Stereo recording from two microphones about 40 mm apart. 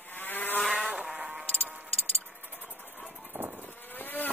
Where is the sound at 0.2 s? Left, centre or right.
Left.